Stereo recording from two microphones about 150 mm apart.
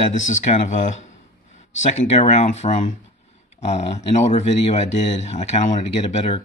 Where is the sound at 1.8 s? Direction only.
50° left (ahead or behind).